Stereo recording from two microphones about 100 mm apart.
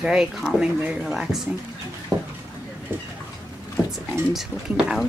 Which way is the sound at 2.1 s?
30° right (ahead or behind).